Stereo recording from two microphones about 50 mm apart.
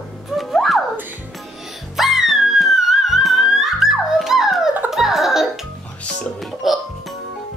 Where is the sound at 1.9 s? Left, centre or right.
Centre.